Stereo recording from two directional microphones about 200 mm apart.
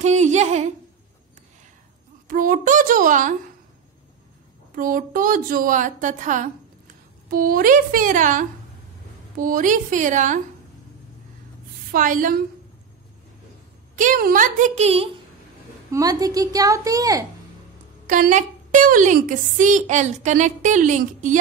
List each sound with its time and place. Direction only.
0.0 s a woman's voice: 35° right (ahead or behind)
2.2 s a woman's voice: 45° right (ahead or behind)
4.7 s a woman's voice: 45° right (ahead or behind)
11.9 s a woman's voice: 40° right (ahead or behind)
13.9 s a woman's voice: 45° right (ahead or behind)
15.9 s a woman's voice: 20° right (ahead or behind)
18.0 s a woman's voice: 40° right (ahead or behind)